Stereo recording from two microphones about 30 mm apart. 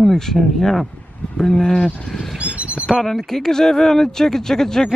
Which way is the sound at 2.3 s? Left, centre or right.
Right.